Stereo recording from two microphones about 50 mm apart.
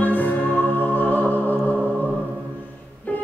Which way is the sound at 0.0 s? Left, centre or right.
Left.